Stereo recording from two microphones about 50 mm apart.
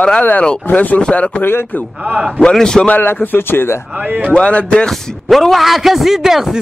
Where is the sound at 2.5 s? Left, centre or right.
Centre.